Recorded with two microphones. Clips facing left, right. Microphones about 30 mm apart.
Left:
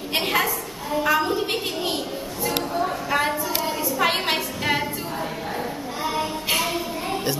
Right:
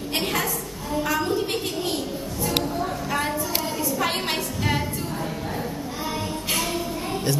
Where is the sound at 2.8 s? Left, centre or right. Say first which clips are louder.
Left 3 dB; centre.